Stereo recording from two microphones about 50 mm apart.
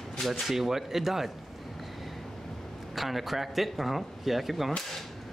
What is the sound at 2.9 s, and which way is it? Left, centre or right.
Speech, centre.